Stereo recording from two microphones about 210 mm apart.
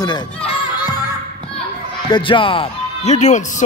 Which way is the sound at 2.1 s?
25° left (ahead or behind).